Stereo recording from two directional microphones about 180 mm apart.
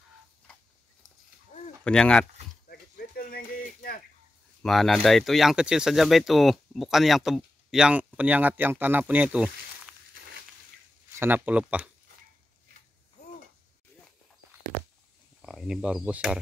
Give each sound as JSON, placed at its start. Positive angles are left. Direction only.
{"t": 1.9, "sound": "speech", "side_deg": 5}
{"t": 2.7, "sound": "a sound", "side_deg": 55}
{"t": 4.6, "sound": "speech", "side_deg": 0}
{"t": 11.1, "sound": "speech", "side_deg": -10}
{"t": 15.4, "sound": "speech", "side_deg": -5}